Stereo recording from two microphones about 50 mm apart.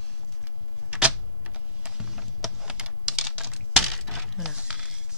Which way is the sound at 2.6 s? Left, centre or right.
Centre.